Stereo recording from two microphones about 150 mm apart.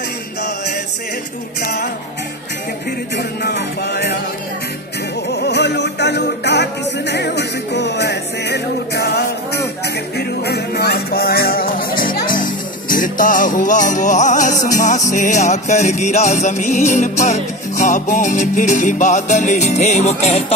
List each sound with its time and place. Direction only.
1.6 s music: 90° left
3.2 s music: 90° left
5.3 s music: 90° left
8.0 s music: 90° left; by 20.5 s 45° left (ahead or behind)